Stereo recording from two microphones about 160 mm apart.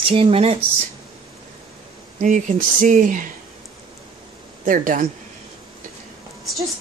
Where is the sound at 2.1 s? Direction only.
55° right (ahead or behind).